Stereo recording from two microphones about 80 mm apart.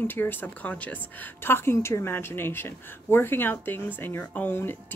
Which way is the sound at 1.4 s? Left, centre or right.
Left.